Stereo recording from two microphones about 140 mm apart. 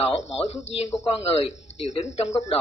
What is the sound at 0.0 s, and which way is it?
Speech, 50° left (ahead or behind).